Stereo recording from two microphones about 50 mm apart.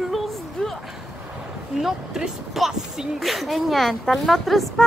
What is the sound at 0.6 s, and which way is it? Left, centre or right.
Speech, centre.